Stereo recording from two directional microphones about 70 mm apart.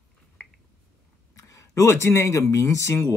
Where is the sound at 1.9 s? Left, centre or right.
Left.